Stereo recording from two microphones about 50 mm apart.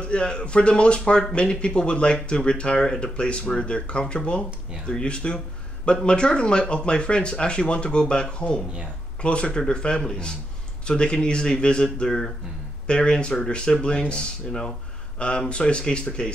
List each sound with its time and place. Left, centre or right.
0.0 s speech: centre